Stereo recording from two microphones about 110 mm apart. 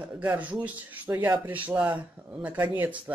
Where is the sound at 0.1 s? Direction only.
10° right (ahead or behind).